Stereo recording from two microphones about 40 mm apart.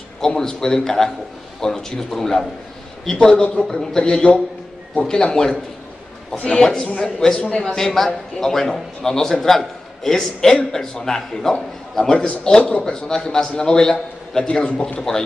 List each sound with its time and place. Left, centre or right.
0.4 s a man's voice: centre
6.3 s a man's voice: left
6.6 s a man's voice: centre
7.7 s a man's voice: centre
12.0 s a man's voice: centre
14.5 s a man's voice: left
15.0 s a man's voice: centre